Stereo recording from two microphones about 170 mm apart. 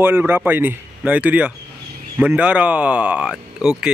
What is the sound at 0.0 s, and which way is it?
Speech, 10° right (ahead or behind).